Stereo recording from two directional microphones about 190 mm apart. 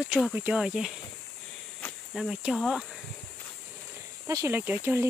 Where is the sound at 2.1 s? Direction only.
Centre (ahead or behind).